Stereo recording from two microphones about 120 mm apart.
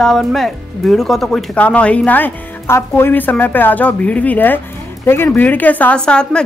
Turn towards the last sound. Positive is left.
turn(degrees=10)  # may be behind; listen again after turning